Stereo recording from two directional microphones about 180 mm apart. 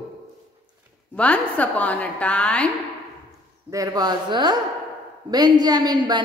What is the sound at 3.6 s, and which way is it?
A woman's voice, 20° right (ahead or behind).